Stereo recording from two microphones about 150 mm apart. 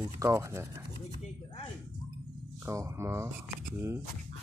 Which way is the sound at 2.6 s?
20° right (ahead or behind).